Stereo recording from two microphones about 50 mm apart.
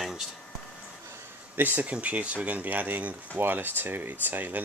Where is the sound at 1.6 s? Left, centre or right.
Right.